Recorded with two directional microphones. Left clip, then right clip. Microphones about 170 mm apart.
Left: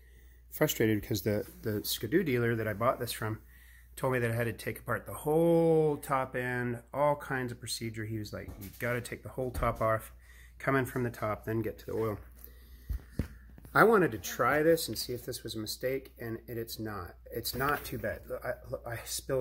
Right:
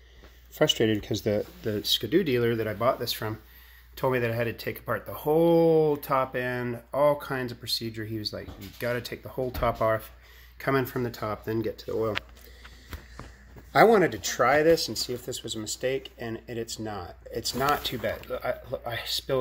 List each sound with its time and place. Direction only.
0.6 s speech: centre (ahead or behind)
13.7 s speech: centre (ahead or behind)
15.8 s speech: 10° right (ahead or behind)